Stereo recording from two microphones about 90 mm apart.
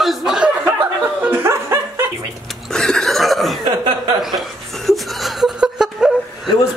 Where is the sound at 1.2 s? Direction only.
25° right (ahead or behind).